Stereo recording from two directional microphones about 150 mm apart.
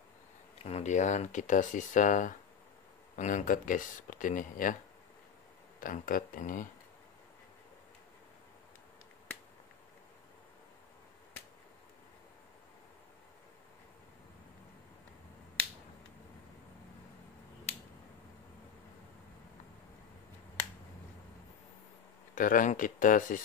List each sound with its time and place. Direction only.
0.7 s speech: 50° left (ahead or behind)
5.8 s speech: 65° left (ahead or behind)
22.3 s speech: 65° left (ahead or behind)